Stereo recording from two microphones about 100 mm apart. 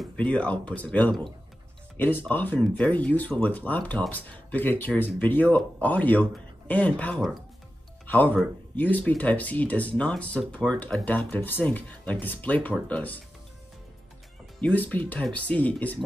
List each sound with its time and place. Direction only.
0.0 s speech: 10° left (ahead or behind)
14.6 s speech: 15° left (ahead or behind)